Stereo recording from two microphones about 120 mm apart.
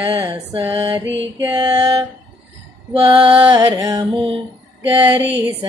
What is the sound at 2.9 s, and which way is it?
Music, 50° right (ahead or behind).